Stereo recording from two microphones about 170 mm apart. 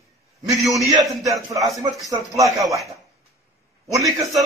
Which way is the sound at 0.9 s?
20° right (ahead or behind).